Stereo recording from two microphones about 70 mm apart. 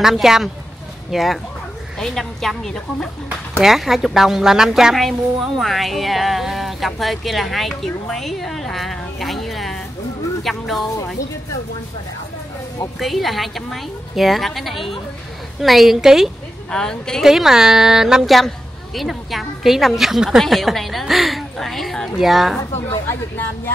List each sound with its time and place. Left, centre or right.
0.0 s a woman's voice: centre
3.6 s a woman's voice: centre
13.0 s a woman's voice: centre
16.7 s a woman's voice: centre
17.2 s a woman's voice: centre
23.3 s a woman's voice: left